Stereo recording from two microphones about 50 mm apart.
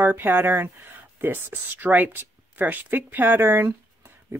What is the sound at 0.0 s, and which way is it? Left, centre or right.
Speech, right.